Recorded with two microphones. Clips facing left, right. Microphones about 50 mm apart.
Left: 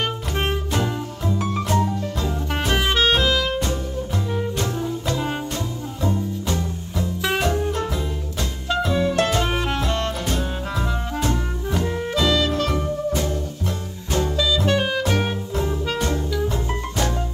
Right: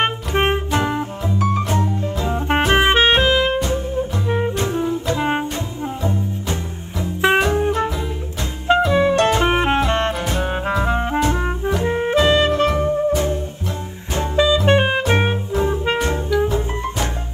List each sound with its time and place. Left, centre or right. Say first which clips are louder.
0.0 s music: right 6 dB; right
5.1 s brass instrument: right 7 dB; right
6.0 s music: left 2 dB; right